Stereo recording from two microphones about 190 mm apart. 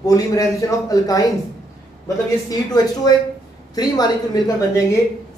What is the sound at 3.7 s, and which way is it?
Speech, 20° left (ahead or behind).